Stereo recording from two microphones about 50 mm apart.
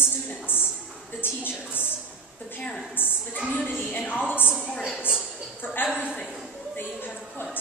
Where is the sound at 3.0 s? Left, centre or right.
Left.